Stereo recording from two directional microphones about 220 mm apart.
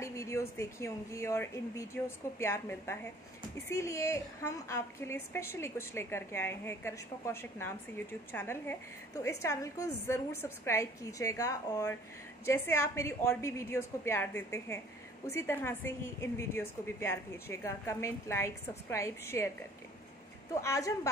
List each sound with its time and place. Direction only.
0.0 s a woman's voice: 15° left (ahead or behind)
20.6 s a woman's voice: 15° left (ahead or behind)